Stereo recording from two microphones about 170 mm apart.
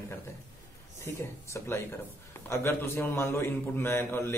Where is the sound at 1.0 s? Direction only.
15° left (ahead or behind).